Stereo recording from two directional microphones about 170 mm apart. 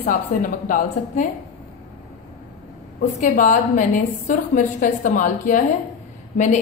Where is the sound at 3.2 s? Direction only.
50° left (ahead or behind).